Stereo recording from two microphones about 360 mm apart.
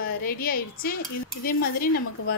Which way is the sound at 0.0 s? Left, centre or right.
Left.